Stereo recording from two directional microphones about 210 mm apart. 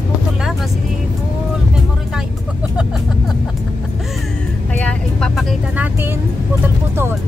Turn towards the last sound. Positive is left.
turn(degrees=0)  # may be behind; listen again after turning